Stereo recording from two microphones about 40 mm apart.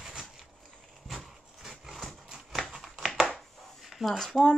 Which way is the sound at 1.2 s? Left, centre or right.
Centre.